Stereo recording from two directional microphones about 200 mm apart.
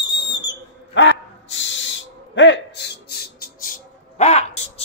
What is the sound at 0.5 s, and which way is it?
Owl, 65° left (ahead or behind).